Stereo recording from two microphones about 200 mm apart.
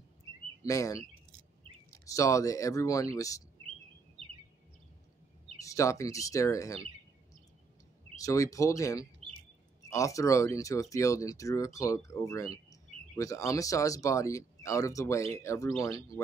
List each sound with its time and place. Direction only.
0.7 s speech: 15° left (ahead or behind)
2.0 s speech: 15° left (ahead or behind)
5.6 s speech: 15° left (ahead or behind)
8.2 s speech: 15° left (ahead or behind)